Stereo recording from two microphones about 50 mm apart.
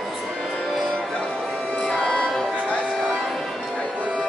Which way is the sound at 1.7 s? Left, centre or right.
Centre.